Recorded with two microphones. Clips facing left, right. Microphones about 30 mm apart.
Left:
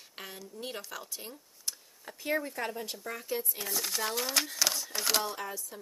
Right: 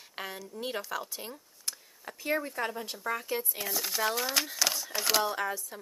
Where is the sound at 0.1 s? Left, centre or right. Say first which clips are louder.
Right 6 dB; centre.